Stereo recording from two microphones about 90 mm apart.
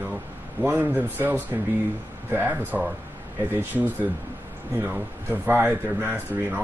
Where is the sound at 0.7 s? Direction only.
20° right (ahead or behind).